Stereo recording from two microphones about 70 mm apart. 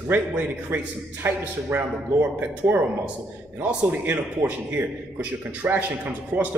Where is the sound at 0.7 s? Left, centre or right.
Right.